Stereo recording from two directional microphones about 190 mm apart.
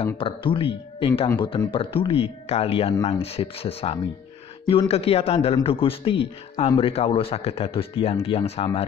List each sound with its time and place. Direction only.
0.2 s speech: 25° left (ahead or behind)